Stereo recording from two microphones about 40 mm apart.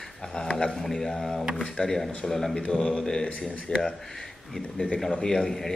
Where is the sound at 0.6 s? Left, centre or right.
Centre.